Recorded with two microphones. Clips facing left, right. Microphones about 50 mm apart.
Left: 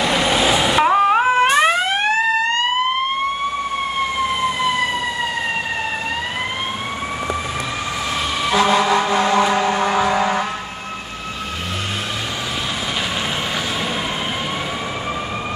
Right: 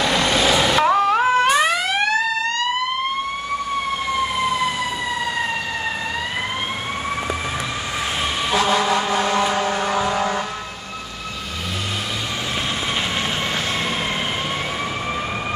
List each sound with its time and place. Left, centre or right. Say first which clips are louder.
0.0 s vehicle: left 1 dB; centre; by 2.7 s left
8.5 s vehicle: left 3 dB; left